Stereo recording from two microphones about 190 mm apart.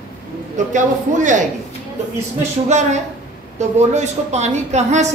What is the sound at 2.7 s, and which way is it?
A woman's voice, 40° right (ahead or behind).